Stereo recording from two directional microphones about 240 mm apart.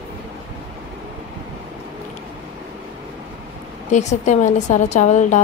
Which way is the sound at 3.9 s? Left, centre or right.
Left.